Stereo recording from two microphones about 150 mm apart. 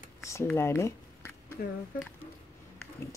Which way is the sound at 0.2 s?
20° left (ahead or behind).